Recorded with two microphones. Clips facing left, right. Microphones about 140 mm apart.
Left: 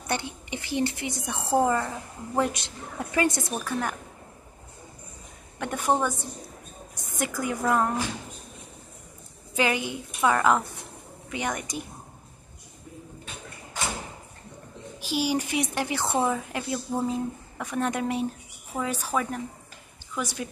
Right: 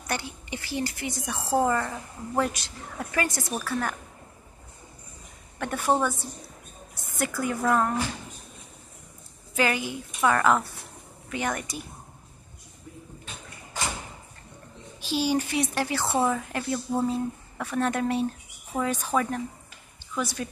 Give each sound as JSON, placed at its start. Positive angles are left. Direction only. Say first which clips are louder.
{"t": 0.0, "sound": "a woman's voice", "louder": "left 2 dB", "side_deg": 20}
{"t": 5.6, "sound": "a woman's voice", "louder": "even", "side_deg": 15}
{"t": 9.6, "sound": "a woman's voice", "louder": "even", "side_deg": 20}
{"t": 15.0, "sound": "a woman's voice", "louder": "right 1 dB", "side_deg": 10}